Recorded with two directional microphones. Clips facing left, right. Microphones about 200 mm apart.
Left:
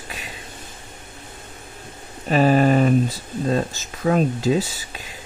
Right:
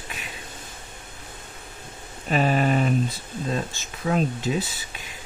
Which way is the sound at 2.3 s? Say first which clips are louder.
Left 6 dB; 40° left (ahead or behind).